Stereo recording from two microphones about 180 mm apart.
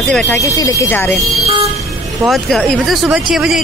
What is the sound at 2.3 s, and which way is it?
Speech, centre (ahead or behind).